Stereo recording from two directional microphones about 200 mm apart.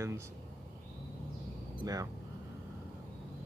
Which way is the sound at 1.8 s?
20° right (ahead or behind).